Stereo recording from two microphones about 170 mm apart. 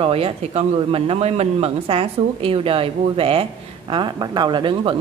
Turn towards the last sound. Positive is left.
turn(degrees=-25)  # may be behind; listen again after turning